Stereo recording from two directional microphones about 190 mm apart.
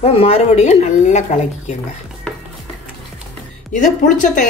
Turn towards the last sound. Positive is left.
turn(degrees=40)  # may be behind; listen again after turning